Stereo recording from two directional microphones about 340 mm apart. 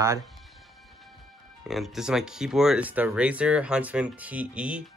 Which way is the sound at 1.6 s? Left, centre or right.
Centre.